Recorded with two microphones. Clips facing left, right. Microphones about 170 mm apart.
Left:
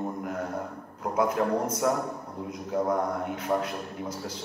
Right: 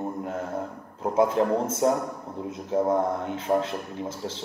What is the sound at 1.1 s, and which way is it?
A man's voice, 25° right (ahead or behind).